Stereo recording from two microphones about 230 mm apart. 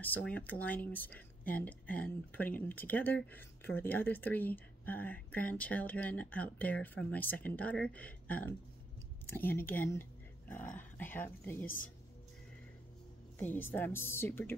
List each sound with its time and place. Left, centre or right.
0.0 s speech: centre
9.2 s a sound: left
9.5 s speech: centre
11.6 s a woman's voice: left
13.4 s speech: centre